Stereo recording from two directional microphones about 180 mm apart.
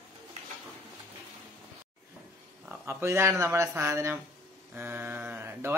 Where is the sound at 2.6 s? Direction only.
15° right (ahead or behind).